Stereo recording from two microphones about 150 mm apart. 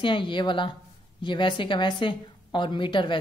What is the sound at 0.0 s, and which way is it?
A woman's voice, 30° left (ahead or behind).